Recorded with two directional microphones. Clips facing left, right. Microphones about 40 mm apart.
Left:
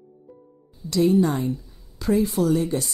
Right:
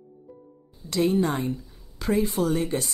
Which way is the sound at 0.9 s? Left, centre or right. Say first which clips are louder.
Left 4 dB; right.